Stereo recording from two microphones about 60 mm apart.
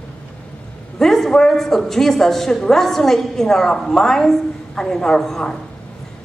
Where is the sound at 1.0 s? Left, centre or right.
Centre.